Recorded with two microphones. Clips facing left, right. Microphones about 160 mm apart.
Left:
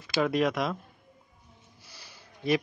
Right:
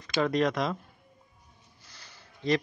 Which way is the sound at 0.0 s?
5° left (ahead or behind).